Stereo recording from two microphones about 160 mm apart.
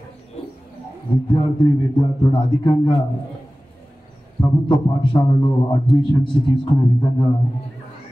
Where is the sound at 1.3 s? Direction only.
30° left (ahead or behind).